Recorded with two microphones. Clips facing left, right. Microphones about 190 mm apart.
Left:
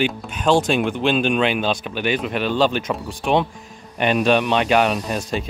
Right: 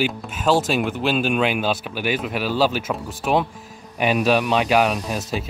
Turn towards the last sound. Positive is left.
turn(degrees=-5)  # may be behind; listen again after turning